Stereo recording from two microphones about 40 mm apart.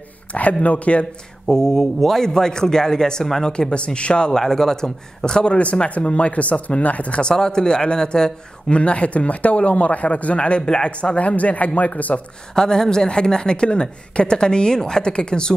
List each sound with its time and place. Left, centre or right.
0.3 s a man's voice: left
1.5 s a man's voice: centre
4.3 s a woman's voice: centre; by 7.2 s left
7.2 s a man's voice: centre; by 12.2 s left
12.5 s a woman's voice: centre